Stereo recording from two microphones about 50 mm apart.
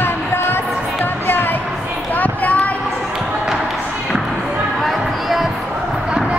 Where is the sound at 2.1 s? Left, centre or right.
Left.